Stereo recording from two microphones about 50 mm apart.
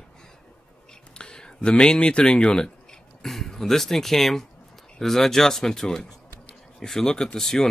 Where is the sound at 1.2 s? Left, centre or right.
Centre.